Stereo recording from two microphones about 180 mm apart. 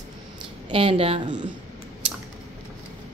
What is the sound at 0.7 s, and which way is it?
Speech, 30° right (ahead or behind).